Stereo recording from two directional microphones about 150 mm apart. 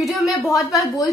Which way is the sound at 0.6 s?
25° left (ahead or behind).